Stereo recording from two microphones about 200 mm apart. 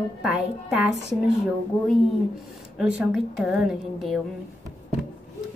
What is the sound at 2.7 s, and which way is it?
A woman's voice, centre (ahead or behind).